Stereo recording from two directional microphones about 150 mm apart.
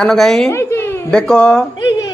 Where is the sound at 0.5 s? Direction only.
15° left (ahead or behind).